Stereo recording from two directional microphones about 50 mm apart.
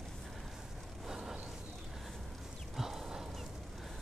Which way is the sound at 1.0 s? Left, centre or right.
Centre.